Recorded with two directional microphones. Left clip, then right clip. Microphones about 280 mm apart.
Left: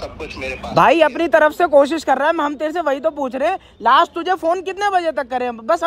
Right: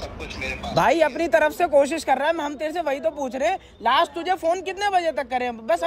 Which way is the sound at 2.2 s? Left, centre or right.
Centre.